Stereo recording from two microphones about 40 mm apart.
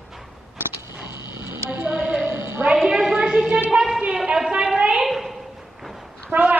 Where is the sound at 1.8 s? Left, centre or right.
Right.